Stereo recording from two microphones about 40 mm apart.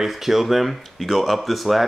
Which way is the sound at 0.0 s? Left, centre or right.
Centre.